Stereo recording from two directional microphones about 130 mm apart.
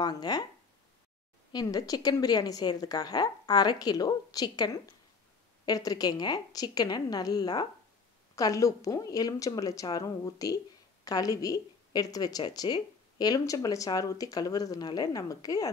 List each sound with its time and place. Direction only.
0.0 s a woman's voice: 30° left (ahead or behind)
1.5 s a woman's voice: 30° left (ahead or behind)